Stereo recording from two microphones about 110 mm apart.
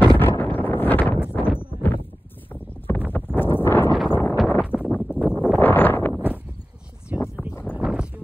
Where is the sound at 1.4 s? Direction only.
15° left (ahead or behind).